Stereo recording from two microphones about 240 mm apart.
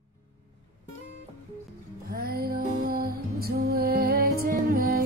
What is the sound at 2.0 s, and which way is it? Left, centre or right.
Music, right.